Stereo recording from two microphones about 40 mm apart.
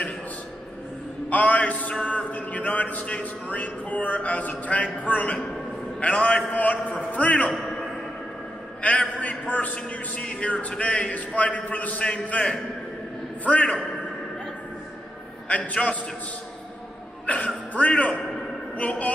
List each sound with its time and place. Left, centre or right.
1.3 s a man's voice: left
1.9 s a man's voice: left
8.8 s a man's voice: left
15.4 s a man's voice: left
15.7 s a man's voice: left
17.3 s a man's voice: left